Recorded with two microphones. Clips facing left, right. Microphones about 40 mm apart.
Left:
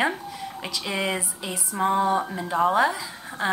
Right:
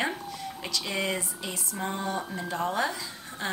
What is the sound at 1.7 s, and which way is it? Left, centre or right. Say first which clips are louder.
Speech: left 11 dB; left.